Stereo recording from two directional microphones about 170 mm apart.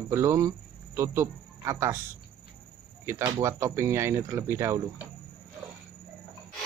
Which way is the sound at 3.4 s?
15° right (ahead or behind).